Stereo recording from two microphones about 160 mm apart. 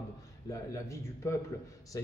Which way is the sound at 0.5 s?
20° left (ahead or behind).